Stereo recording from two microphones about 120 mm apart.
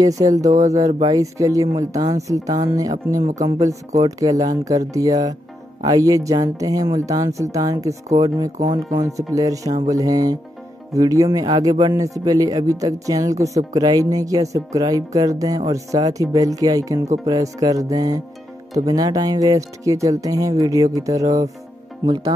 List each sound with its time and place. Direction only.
0.0 s speech: 30° right (ahead or behind)
17.2 s music: 30° right (ahead or behind)
18.7 s speech: 30° right (ahead or behind)